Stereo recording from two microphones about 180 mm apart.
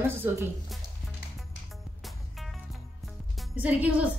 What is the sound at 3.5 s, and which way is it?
Speech, 10° right (ahead or behind).